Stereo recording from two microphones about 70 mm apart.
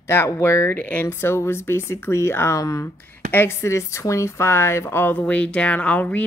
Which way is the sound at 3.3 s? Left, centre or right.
Left.